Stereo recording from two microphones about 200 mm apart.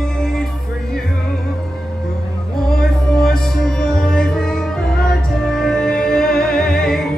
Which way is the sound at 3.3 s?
5° left (ahead or behind).